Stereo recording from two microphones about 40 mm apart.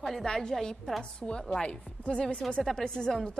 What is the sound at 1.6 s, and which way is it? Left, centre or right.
A woman's voice, left.